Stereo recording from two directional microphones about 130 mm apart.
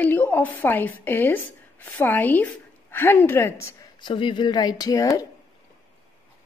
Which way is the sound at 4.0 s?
40° left (ahead or behind).